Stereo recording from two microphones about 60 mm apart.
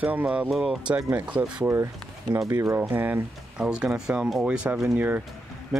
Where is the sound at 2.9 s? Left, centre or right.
Right.